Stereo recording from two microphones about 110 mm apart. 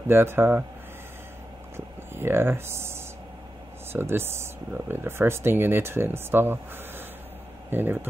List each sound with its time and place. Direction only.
0.0 s speech: 20° right (ahead or behind)
2.1 s speech: 20° right (ahead or behind)
7.7 s speech: 20° right (ahead or behind)